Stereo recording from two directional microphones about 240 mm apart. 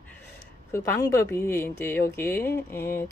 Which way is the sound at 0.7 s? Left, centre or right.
Centre.